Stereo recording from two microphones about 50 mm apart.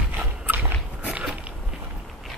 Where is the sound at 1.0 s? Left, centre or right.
Right.